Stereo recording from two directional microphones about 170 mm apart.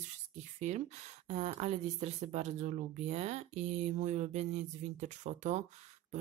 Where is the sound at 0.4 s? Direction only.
45° right (ahead or behind).